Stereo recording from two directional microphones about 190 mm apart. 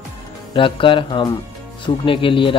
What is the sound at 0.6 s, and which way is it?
Speech, 25° left (ahead or behind).